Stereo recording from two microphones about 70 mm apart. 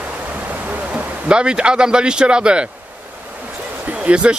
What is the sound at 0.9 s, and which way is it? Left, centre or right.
Speech, centre.